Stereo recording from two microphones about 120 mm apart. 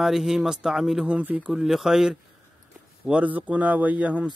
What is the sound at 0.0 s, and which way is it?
A man's voice, 5° right (ahead or behind).